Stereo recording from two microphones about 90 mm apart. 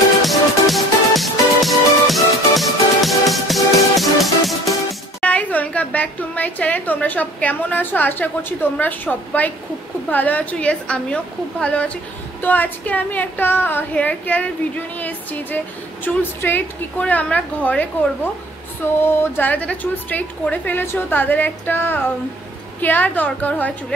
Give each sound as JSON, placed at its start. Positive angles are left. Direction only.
{"t": 0.2, "sound": "music", "side_deg": 0}
{"t": 5.2, "sound": "a woman's voice", "side_deg": 15}
{"t": 19.0, "sound": "a woman's voice", "side_deg": 20}